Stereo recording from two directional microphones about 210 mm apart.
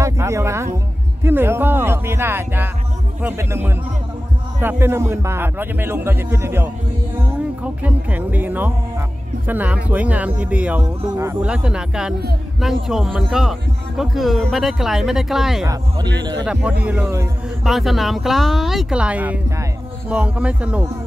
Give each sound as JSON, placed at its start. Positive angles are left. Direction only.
{"t": 0.0, "sound": "music", "side_deg": -15}
{"t": 1.2, "sound": "a man's voice", "side_deg": -10}
{"t": 15.6, "sound": "a man's voice", "side_deg": -15}
{"t": 16.8, "sound": "a man's voice", "side_deg": -10}
{"t": 17.6, "sound": "speech", "side_deg": 0}